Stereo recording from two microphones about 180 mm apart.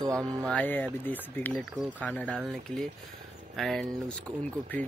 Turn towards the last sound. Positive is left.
turn(degrees=0)  # may be behind; listen again after turning